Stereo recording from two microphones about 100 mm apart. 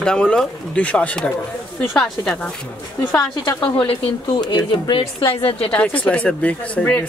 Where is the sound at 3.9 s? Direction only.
50° left (ahead or behind).